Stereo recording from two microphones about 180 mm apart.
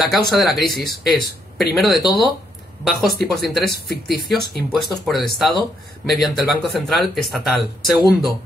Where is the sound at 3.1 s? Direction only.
60° left (ahead or behind).